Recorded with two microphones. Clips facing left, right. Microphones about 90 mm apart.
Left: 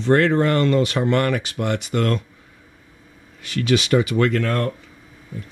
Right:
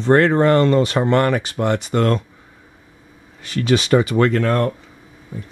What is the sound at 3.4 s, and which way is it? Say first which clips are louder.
Speech: right 2 dB; 35° right (ahead or behind).